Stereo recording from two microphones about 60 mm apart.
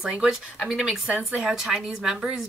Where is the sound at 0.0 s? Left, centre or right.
Centre.